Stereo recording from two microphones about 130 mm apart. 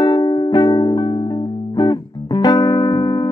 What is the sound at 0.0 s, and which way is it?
Music, 35° left (ahead or behind).